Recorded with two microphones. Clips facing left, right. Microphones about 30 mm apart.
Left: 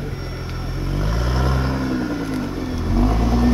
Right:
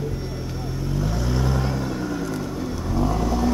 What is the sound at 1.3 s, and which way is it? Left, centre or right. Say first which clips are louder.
Vehicle: left 3 dB; left.